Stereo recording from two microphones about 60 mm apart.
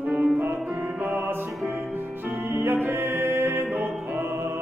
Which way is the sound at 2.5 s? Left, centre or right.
Right.